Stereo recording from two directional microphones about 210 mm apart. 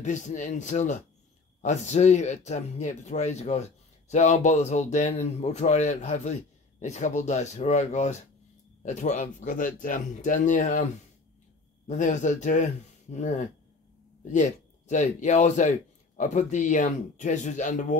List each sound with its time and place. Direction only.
0.0 s speech: 35° left (ahead or behind)
11.9 s speech: 35° left (ahead or behind)
14.9 s speech: 35° left (ahead or behind)